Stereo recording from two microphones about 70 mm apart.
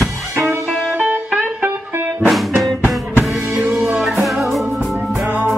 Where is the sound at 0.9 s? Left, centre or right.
Right.